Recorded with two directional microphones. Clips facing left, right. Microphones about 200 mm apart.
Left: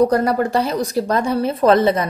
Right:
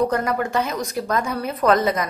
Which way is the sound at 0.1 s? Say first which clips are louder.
Left 5 dB; 35° left (ahead or behind).